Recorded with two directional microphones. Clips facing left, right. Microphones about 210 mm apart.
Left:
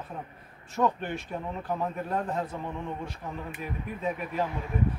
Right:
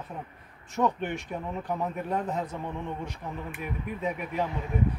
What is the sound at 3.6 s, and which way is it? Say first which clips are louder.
Speech: right 3 dB; 15° right (ahead or behind).